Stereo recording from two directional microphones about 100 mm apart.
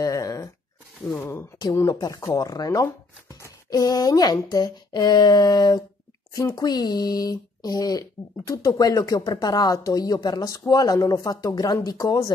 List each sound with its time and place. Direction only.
0.0 s a sound: 35° left (ahead or behind)
1.1 s speech: 20° left (ahead or behind)
1.7 s speech: 30° left (ahead or behind)